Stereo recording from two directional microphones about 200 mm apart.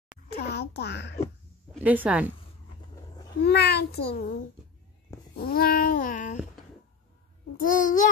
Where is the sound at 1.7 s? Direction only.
5° right (ahead or behind).